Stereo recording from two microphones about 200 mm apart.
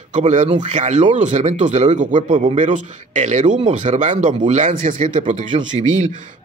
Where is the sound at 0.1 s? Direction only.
35° right (ahead or behind).